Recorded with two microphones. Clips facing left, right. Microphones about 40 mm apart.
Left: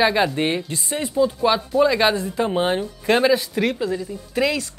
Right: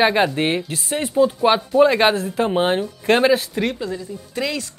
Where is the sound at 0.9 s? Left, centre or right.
Centre.